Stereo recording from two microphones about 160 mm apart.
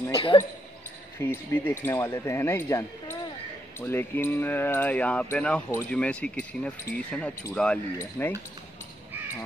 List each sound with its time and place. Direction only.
0.1 s speech: 30° left (ahead or behind)
1.2 s speech: 15° left (ahead or behind)